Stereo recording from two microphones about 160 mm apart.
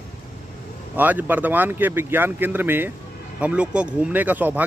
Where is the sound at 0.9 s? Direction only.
10° right (ahead or behind).